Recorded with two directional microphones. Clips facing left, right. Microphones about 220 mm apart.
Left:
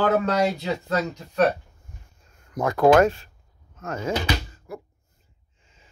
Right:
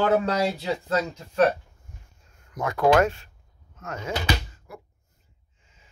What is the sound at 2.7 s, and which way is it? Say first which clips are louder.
Speech: left 3 dB; 40° left (ahead or behind).